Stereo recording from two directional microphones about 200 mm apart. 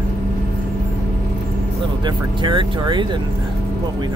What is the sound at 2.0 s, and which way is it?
Speech, 25° right (ahead or behind).